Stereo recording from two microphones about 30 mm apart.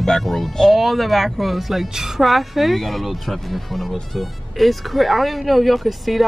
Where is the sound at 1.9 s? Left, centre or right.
Centre.